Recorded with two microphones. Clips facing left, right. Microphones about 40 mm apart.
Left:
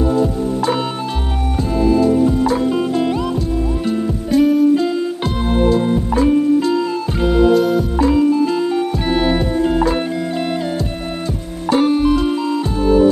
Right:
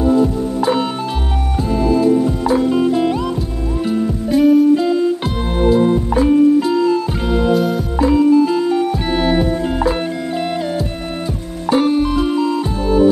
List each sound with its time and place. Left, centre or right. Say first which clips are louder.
1.6 s music: even; centre
11.7 s music: left 1 dB; centre